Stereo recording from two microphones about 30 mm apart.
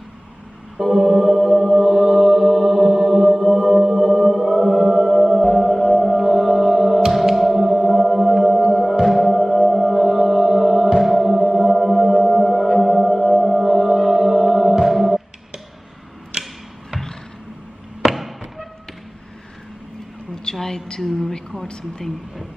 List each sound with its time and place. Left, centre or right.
0.7 s music: centre
9.0 s singing bowl: centre
11.0 s music: centre
16.3 s arrow: right
18.1 s a sound: centre
20.2 s a sound: centre